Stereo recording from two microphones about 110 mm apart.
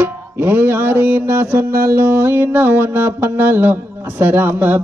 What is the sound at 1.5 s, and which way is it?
Mantra, 20° right (ahead or behind).